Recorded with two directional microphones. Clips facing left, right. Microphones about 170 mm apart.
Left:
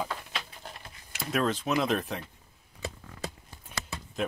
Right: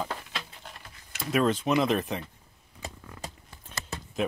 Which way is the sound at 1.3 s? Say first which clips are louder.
Right 3 dB; centre (ahead or behind).